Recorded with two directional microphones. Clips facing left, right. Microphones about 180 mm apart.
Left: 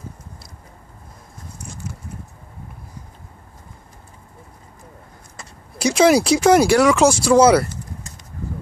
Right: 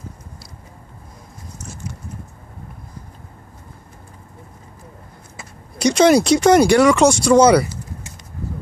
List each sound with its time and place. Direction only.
5.8 s speech: 5° left (ahead or behind)